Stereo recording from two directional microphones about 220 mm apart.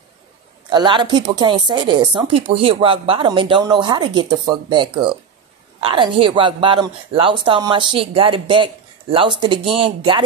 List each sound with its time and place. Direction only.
0.7 s a woman's voice: 20° right (ahead or behind)